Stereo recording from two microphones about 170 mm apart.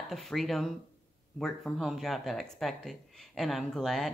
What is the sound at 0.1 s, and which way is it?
Speech, centre (ahead or behind).